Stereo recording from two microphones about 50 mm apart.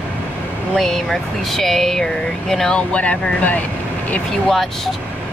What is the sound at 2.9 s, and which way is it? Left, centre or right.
Speech, left.